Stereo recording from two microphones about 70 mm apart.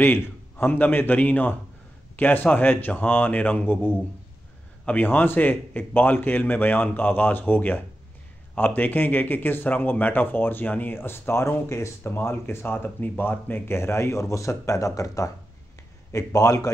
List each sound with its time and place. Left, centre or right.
0.0 s a man's voice: left